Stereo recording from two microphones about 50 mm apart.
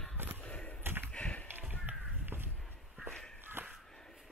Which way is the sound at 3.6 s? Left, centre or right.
Right.